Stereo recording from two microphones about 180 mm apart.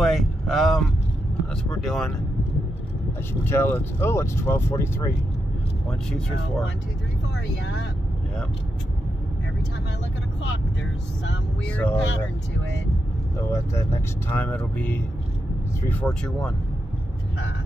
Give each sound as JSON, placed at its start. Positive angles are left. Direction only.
{"t": 0.0, "sound": "speech", "side_deg": 0}
{"t": 3.4, "sound": "speech", "side_deg": 10}
{"t": 10.4, "sound": "speech", "side_deg": 90}
{"t": 11.6, "sound": "speech", "side_deg": 10}
{"t": 13.5, "sound": "speech", "side_deg": 15}